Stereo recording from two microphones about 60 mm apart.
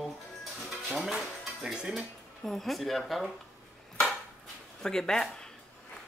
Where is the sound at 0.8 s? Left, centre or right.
Centre.